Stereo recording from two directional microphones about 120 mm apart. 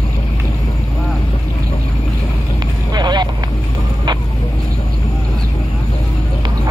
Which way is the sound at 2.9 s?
35° right (ahead or behind).